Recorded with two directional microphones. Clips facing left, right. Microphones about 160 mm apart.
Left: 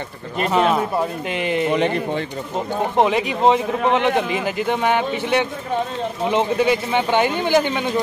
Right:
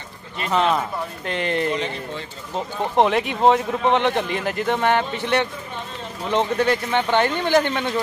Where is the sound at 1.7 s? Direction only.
60° left (ahead or behind).